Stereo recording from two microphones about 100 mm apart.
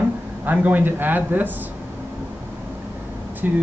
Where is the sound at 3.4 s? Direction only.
15° right (ahead or behind).